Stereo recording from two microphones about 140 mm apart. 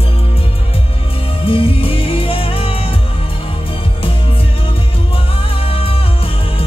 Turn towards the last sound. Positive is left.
turn(degrees=40)  # may be behind; listen again after turning